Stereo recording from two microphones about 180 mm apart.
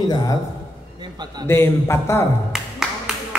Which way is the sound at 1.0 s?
20° right (ahead or behind).